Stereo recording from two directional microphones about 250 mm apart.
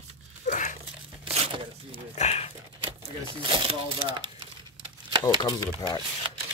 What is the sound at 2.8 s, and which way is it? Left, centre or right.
Speech, centre.